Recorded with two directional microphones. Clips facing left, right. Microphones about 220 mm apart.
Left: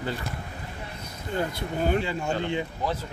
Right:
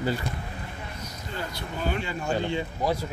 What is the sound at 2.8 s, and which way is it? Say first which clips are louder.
Speech: right 5 dB; 10° right (ahead or behind).